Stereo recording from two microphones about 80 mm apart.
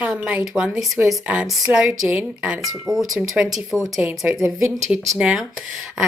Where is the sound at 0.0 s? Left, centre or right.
Centre.